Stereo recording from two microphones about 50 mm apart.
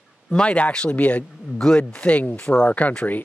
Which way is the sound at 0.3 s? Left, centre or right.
Left.